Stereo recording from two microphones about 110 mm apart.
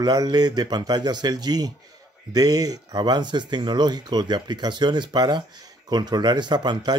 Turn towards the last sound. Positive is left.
turn(degrees=-40)  # may be behind; listen again after turning